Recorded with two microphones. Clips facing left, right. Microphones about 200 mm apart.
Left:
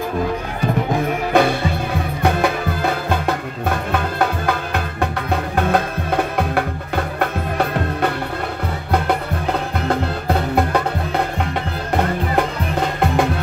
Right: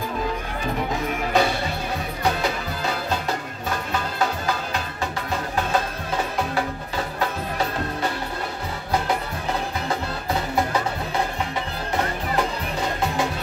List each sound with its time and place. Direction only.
0.9 s music: 55° left (ahead or behind)